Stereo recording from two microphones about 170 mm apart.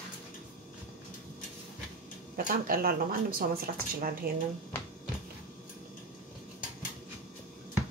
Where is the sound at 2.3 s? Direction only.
55° right (ahead or behind).